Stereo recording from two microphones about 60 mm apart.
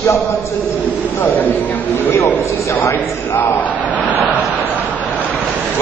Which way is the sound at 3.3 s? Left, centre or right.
Left.